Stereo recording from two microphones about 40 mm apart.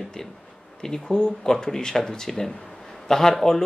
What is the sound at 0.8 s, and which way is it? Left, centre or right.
Speech, centre.